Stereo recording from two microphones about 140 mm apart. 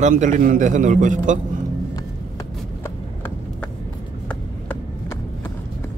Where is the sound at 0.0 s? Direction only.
65° right (ahead or behind).